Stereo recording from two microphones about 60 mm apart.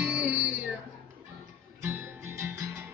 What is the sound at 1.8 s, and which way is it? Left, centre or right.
Music, right.